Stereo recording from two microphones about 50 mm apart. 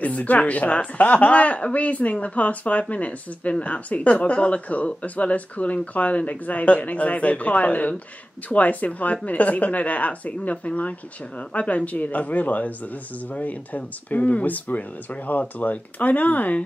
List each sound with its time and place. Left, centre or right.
0.0 s speech: left